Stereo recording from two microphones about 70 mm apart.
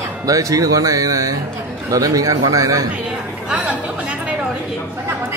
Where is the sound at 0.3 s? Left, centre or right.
Right.